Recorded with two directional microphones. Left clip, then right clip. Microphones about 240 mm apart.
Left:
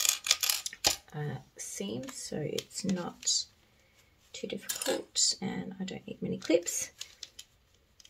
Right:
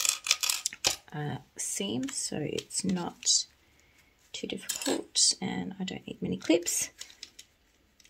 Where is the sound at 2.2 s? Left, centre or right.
Right.